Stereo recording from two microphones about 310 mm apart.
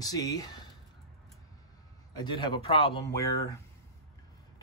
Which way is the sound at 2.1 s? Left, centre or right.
Centre.